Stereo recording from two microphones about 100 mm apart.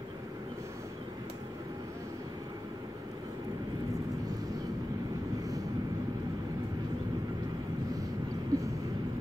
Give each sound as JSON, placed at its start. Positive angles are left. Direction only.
{"t": 8.5, "sound": "vehicle", "side_deg": -35}